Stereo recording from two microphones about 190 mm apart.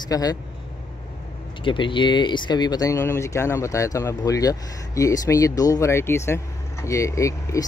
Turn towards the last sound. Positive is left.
turn(degrees=15)  # may be behind; listen again after turning